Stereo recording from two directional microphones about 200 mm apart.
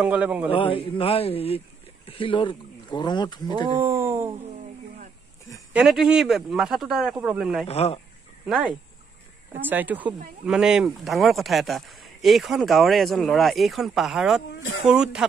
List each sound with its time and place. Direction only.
0.0 s speech: 5° right (ahead or behind)
0.5 s speech: 25° left (ahead or behind)
3.7 s speech: 10° right (ahead or behind)
5.7 s speech: 5° right (ahead or behind)
7.6 s speech: 30° left (ahead or behind)
9.5 s speech: 10° right (ahead or behind)
14.5 s speech: 70° left (ahead or behind)
14.9 s speech: 5° right (ahead or behind)